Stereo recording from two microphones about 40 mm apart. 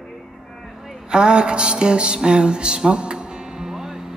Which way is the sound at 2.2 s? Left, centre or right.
Right.